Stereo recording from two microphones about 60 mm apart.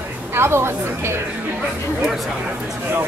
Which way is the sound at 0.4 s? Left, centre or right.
Right.